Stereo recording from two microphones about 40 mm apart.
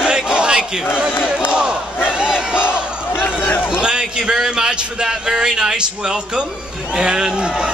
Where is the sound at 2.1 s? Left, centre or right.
Right.